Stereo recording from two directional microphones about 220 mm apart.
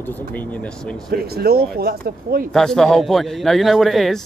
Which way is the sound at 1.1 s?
45° right (ahead or behind).